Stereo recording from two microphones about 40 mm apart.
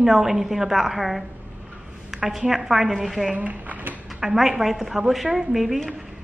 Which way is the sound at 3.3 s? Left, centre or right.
Right.